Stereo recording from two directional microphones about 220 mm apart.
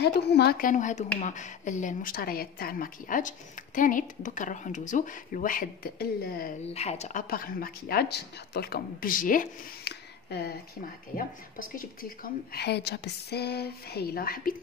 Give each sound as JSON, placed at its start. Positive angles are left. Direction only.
{"t": 0.0, "sound": "a woman's voice", "side_deg": 50}
{"t": 6.7, "sound": "a woman's voice", "side_deg": 30}